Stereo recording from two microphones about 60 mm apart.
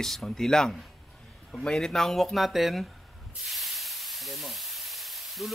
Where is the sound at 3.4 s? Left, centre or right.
Centre.